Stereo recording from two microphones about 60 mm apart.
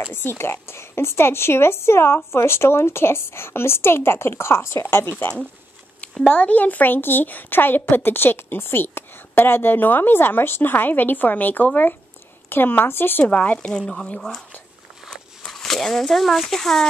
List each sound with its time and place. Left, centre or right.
0.1 s a woman's voice: left
6.2 s speech: left
13.2 s speech: left
13.7 s speech: centre
15.0 s a sound: centre